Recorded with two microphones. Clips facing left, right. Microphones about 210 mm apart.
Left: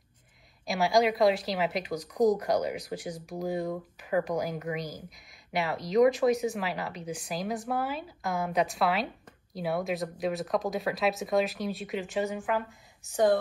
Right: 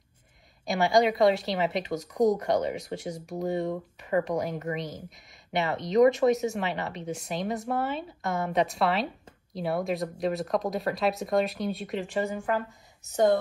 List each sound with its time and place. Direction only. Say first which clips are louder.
0.7 s speech: right 2 dB; centre (ahead or behind)
13.0 s speech: right 1 dB; 20° right (ahead or behind)